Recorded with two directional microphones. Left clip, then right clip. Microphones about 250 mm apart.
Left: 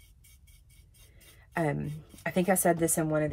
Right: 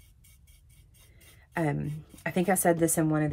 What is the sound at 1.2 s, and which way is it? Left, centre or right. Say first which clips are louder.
A woman's voice: even; centre.